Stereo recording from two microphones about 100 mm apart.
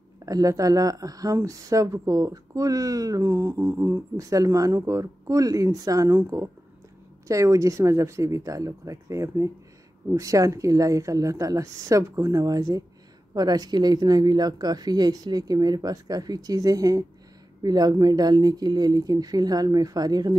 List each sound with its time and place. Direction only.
0.2 s speech: 35° right (ahead or behind)